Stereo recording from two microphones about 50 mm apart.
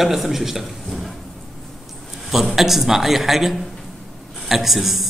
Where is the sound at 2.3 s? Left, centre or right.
Centre.